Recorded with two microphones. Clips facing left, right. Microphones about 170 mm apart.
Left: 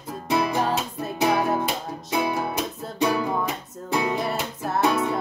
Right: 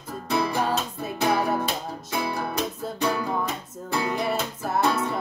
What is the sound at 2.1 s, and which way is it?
Music, 20° left (ahead or behind).